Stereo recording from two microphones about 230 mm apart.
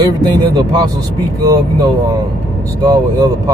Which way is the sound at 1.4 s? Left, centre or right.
Centre.